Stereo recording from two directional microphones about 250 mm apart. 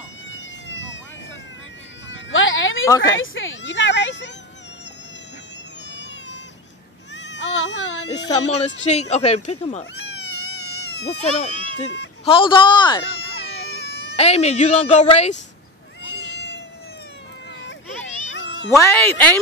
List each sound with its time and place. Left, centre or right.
0.3 s emergency vehicle: left
2.0 s a sound: left
3.2 s speech: left
7.2 s baby cry: left
8.3 s a woman's voice: left
11.2 s a woman's voice: left
13.0 s baby cry: left
14.1 s a woman's voice: left
16.3 s cat: left
17.6 s children playing: left
18.7 s speech: centre